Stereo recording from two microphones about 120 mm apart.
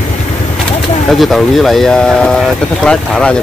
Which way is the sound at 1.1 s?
Centre (ahead or behind).